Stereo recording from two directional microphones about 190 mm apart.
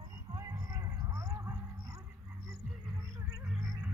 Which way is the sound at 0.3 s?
15° right (ahead or behind).